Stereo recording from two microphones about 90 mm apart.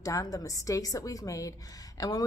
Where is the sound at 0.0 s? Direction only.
40° left (ahead or behind).